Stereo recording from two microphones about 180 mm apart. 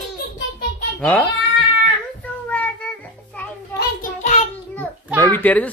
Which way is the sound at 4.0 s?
45° left (ahead or behind).